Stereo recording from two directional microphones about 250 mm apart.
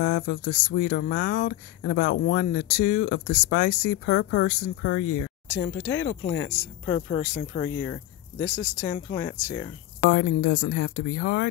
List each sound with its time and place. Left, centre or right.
0.0 s speech: left
5.5 s speech: centre
7.2 s speech: left
7.6 s speech: centre
10.1 s speech: left